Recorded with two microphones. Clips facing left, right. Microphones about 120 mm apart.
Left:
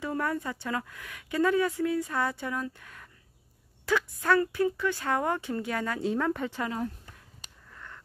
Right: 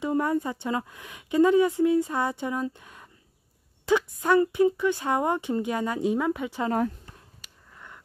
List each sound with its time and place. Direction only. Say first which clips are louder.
0.0 s a woman's voice: right 6 dB; 20° right (ahead or behind)